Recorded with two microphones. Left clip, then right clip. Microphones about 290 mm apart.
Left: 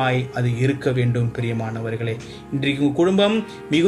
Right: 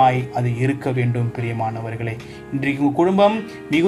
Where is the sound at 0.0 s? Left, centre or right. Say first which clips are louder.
Right 5 dB; right.